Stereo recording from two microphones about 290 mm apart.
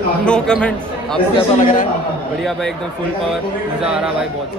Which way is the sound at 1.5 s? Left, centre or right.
Left.